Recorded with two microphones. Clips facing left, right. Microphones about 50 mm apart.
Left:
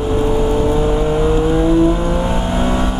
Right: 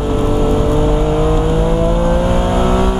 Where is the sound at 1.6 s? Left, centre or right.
Centre.